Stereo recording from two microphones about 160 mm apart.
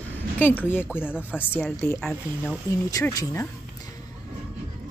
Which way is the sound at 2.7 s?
20° left (ahead or behind).